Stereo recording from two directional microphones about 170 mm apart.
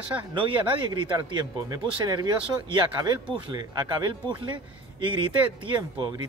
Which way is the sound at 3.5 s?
25° right (ahead or behind).